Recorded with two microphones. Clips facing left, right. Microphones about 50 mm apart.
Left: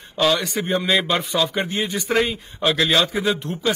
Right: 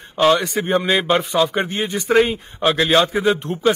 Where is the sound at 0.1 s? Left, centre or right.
Right.